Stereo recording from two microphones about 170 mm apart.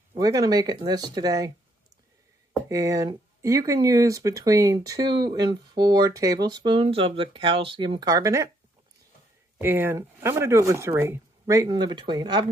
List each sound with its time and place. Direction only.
0.2 s speech: 20° right (ahead or behind)
2.7 s speech: 20° right (ahead or behind)
9.6 s speech: 10° right (ahead or behind)